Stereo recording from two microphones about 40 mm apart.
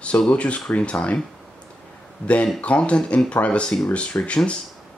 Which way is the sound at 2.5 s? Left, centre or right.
Left.